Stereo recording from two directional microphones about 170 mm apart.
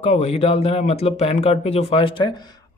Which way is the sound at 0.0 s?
40° left (ahead or behind).